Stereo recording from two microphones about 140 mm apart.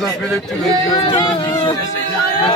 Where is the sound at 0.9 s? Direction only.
30° left (ahead or behind).